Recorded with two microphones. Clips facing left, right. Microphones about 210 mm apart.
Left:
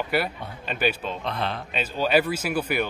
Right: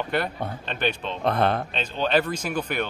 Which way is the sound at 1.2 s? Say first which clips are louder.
Right 9 dB; 50° right (ahead or behind).